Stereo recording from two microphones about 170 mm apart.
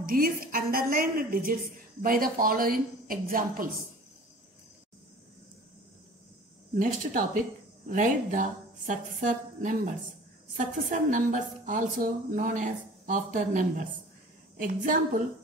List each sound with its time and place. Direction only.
0.0 s a woman's voice: 55° right (ahead or behind)
6.8 s a woman's voice: 55° right (ahead or behind)